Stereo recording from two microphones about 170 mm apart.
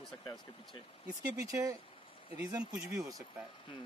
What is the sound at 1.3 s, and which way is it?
Speech, 20° right (ahead or behind).